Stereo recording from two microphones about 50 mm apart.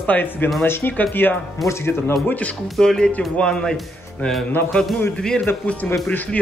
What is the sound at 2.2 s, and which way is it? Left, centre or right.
Speech, left.